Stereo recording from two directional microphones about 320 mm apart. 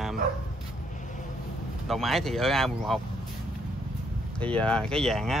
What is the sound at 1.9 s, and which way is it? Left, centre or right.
Speech, centre.